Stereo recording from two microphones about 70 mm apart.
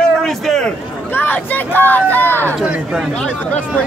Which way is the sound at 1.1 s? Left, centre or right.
Left.